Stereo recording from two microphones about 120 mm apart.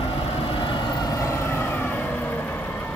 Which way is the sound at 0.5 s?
40° left (ahead or behind).